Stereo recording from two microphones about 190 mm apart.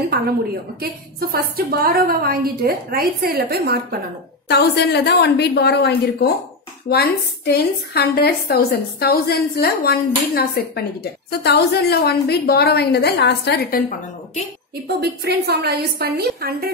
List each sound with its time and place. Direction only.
0.1 s a woman's voice: 55° right (ahead or behind)
4.5 s a woman's voice: 60° left (ahead or behind)
15.0 s a woman's voice: 60° right (ahead or behind)